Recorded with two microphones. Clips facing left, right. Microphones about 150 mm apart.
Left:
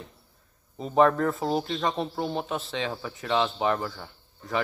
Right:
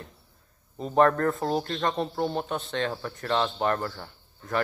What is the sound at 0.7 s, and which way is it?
Speech, centre (ahead or behind).